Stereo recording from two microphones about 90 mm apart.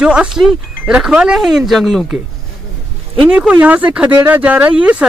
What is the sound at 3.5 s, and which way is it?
Speech, 15° right (ahead or behind).